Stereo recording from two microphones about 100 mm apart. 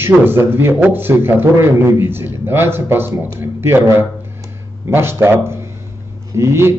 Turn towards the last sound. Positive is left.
turn(degrees=-25)  # may be behind; listen again after turning